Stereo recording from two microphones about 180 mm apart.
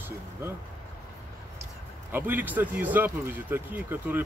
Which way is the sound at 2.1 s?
10° right (ahead or behind).